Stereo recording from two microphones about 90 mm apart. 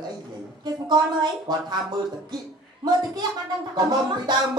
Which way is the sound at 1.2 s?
50° right (ahead or behind).